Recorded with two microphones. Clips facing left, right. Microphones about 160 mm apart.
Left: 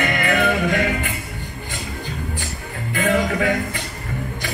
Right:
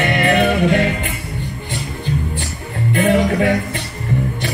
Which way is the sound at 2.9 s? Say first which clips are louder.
Right 5 dB; 25° right (ahead or behind).